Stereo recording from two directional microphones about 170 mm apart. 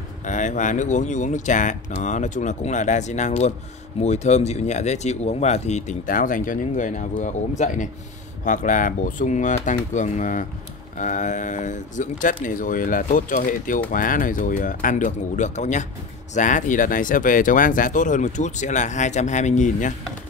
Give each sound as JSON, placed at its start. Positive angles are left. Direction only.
{"t": 0.2, "sound": "speech", "side_deg": 45}